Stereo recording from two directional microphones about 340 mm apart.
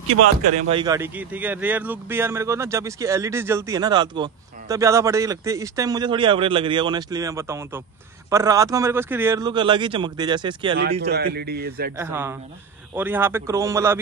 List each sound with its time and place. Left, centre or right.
0.1 s speech: centre
11.0 s a man's voice: right
12.0 s speech: centre